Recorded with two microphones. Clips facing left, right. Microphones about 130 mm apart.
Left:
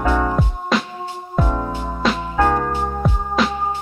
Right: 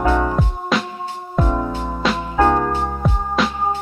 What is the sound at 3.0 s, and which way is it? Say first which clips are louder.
Music: right 1 dB; centre (ahead or behind).